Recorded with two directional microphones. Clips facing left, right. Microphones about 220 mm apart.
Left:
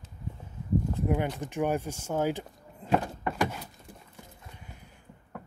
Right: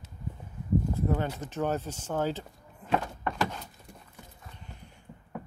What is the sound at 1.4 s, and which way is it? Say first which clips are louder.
Speech: left 2 dB; 15° left (ahead or behind).